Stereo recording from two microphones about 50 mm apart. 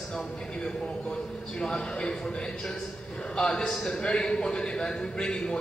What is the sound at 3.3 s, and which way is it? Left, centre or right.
A man's voice, centre.